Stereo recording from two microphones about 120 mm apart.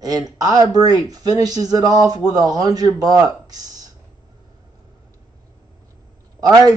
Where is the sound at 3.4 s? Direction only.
30° right (ahead or behind).